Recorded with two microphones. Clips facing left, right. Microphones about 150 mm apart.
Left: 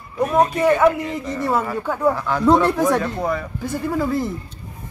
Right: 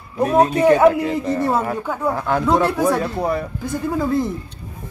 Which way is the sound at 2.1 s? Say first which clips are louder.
Right 3 dB; 50° right (ahead or behind).